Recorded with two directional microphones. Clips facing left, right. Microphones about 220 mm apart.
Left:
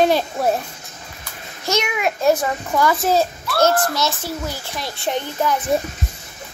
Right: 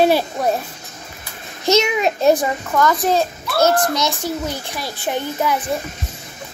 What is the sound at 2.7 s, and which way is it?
Speech, 5° left (ahead or behind).